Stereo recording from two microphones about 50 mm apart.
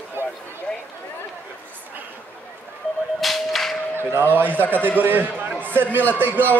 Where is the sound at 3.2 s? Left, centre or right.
Centre.